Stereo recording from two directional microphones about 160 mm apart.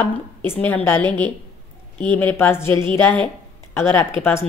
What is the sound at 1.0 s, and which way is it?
Speech, 30° right (ahead or behind).